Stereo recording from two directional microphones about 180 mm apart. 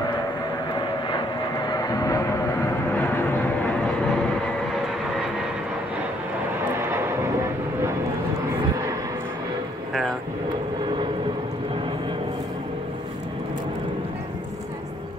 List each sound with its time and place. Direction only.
1.7 s vehicle: 20° left (ahead or behind); by 4.2 s 5° left (ahead or behind)